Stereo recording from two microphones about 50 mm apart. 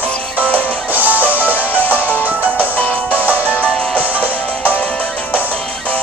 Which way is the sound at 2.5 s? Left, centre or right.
Left.